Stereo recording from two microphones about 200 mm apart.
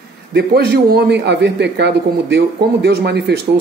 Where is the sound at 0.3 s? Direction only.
55° right (ahead or behind).